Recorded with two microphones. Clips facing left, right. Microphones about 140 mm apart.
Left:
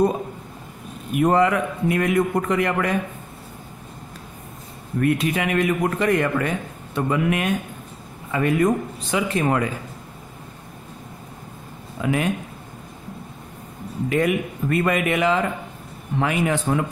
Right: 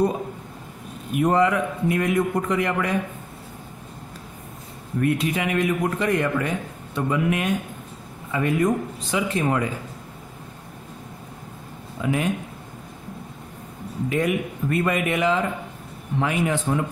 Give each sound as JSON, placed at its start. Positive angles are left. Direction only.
{"t": 1.1, "sound": "a man's voice", "side_deg": 60}
{"t": 5.0, "sound": "a man's voice", "side_deg": 60}
{"t": 12.0, "sound": "speech", "side_deg": 80}
{"t": 14.0, "sound": "speech", "side_deg": 70}